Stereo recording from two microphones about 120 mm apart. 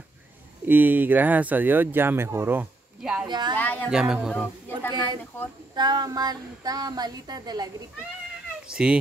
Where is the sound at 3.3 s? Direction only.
40° right (ahead or behind).